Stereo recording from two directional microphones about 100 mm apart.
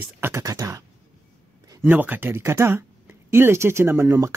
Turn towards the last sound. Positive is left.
turn(degrees=-30)  # may be behind; listen again after turning